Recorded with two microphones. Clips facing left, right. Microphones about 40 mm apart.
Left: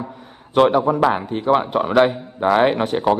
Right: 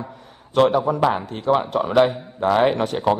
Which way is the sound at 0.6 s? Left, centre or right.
Centre.